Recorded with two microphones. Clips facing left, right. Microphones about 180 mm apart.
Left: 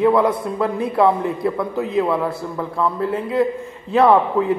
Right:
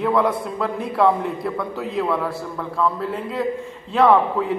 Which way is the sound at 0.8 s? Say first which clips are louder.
Left 1 dB; 5° left (ahead or behind).